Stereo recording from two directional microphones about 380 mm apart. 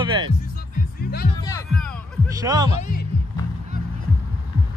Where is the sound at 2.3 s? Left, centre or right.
Centre.